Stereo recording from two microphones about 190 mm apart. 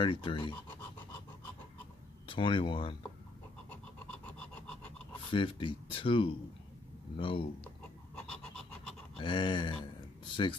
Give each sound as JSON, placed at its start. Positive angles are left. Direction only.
{"t": 0.0, "sound": "speech", "side_deg": 25}
{"t": 2.2, "sound": "speech", "side_deg": 25}
{"t": 3.7, "sound": "a sound", "side_deg": 10}
{"t": 5.3, "sound": "speech", "side_deg": 25}
{"t": 9.2, "sound": "speech", "side_deg": 25}